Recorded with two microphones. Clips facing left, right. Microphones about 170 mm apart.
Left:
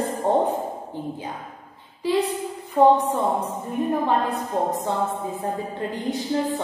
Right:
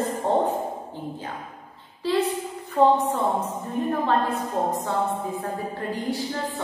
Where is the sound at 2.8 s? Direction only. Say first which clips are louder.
Left 2 dB; 20° left (ahead or behind).